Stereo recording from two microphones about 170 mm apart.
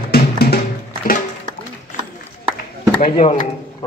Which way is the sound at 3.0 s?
40° left (ahead or behind).